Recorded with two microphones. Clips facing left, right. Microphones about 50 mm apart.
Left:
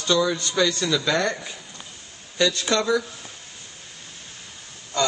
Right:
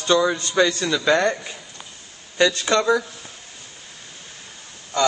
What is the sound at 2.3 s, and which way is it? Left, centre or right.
Speech, right.